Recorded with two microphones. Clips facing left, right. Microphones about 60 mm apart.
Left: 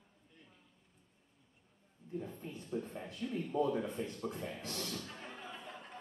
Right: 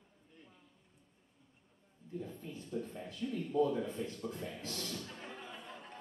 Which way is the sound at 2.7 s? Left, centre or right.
Left.